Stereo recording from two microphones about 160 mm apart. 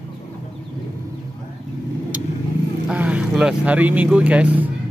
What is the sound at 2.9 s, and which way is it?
Speech, 5° right (ahead or behind).